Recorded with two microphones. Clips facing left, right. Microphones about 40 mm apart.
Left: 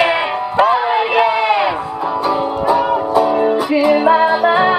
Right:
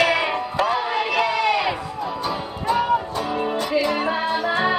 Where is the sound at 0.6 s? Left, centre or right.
Left.